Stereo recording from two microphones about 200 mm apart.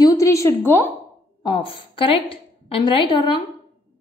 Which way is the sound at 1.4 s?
25° left (ahead or behind).